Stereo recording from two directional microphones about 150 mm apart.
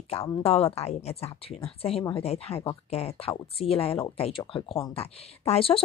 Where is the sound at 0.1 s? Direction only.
40° left (ahead or behind).